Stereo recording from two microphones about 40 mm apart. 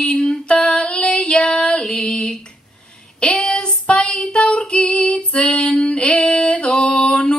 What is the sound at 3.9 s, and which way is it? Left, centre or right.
Female singing, left.